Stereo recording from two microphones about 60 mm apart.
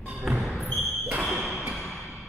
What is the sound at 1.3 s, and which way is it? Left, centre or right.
Basketball bounce, centre.